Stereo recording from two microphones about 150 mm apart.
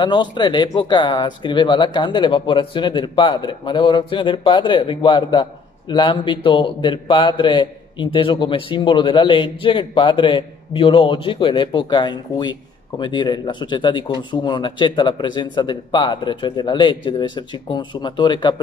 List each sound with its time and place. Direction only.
0.0 s speech: 30° left (ahead or behind)